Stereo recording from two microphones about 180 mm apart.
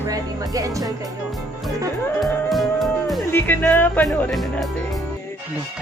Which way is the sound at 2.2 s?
Centre (ahead or behind).